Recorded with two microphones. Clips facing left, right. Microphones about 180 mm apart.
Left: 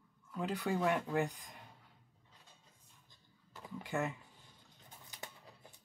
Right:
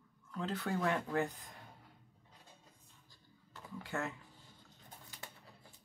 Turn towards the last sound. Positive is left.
turn(degrees=15)  # may be behind; listen again after turning